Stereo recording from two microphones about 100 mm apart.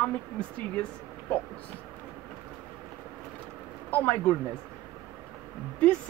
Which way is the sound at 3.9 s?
15° left (ahead or behind).